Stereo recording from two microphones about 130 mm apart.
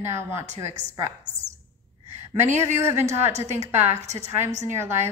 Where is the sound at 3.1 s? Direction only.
60° right (ahead or behind).